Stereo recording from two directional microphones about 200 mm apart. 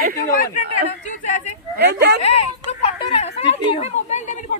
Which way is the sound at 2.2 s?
30° left (ahead or behind).